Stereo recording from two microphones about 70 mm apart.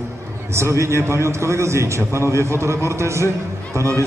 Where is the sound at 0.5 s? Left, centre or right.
Right.